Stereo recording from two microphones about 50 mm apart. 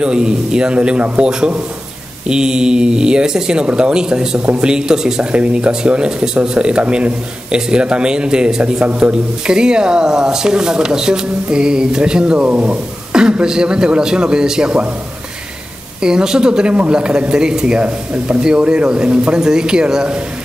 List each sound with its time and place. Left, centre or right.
0.0 s speech: centre
16.0 s speech: centre